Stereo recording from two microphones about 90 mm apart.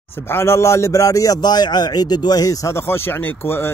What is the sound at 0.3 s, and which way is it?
Speech, 30° left (ahead or behind).